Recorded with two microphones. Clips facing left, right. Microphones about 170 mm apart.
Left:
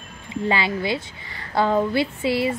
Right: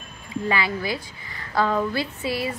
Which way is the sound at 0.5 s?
25° left (ahead or behind).